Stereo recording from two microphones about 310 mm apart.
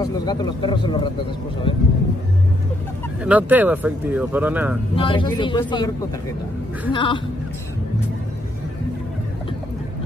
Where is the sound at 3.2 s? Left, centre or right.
Centre.